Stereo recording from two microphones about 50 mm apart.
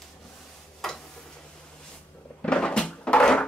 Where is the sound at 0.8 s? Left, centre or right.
Centre.